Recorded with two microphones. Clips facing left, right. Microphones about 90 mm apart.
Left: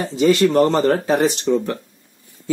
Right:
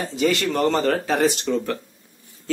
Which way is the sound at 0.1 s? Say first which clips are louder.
Left 8 dB; 30° left (ahead or behind).